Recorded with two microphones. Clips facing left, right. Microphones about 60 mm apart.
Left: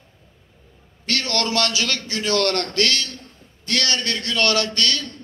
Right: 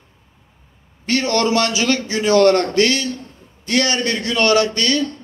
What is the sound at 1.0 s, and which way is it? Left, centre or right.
A man's voice, centre.